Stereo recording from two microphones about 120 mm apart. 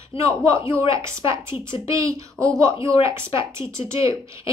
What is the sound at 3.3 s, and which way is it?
Speech, 25° right (ahead or behind).